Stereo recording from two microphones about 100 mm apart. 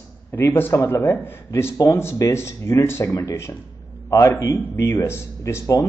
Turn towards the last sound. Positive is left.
turn(degrees=30)  # may be behind; listen again after turning